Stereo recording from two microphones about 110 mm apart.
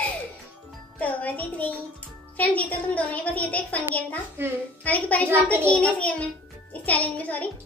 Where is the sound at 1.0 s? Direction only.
15° left (ahead or behind).